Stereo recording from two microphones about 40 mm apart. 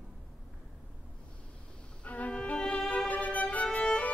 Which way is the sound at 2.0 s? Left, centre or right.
Left.